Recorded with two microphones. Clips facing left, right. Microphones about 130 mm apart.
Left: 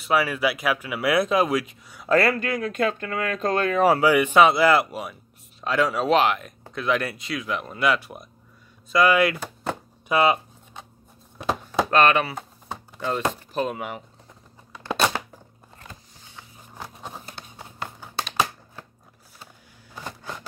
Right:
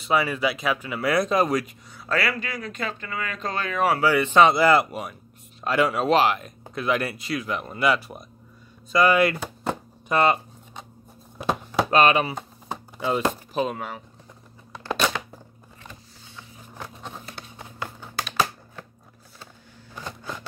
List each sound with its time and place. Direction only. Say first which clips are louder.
0.0 s speech: left 1 dB; 5° left (ahead or behind)
2.1 s speech: left 6 dB; 45° left (ahead or behind)
3.9 s speech: left 2 dB; 20° left (ahead or behind); by 9.4 s centre (ahead or behind)
10.0 s a sound: left 1 dB; 5° left (ahead or behind)
11.9 s speech: even; 15° right (ahead or behind)
12.6 s a sound: right 2 dB; 10° right (ahead or behind)